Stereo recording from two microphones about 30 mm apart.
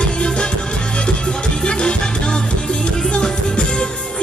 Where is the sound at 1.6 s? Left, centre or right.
Left.